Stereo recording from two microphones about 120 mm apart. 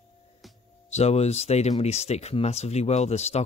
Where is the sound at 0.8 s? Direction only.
65° left (ahead or behind).